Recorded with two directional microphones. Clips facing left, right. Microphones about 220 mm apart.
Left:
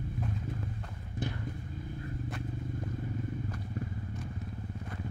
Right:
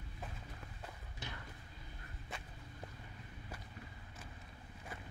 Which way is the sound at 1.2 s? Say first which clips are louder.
Left 15 dB; 50° left (ahead or behind).